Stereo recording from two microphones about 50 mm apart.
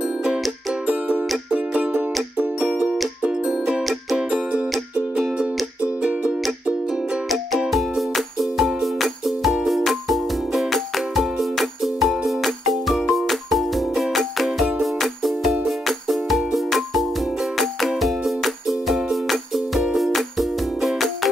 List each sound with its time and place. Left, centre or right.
0.8 s music: right
3.3 s music: centre
5.8 s music: right
7.2 s music: centre